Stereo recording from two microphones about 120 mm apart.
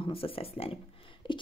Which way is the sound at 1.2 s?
45° left (ahead or behind).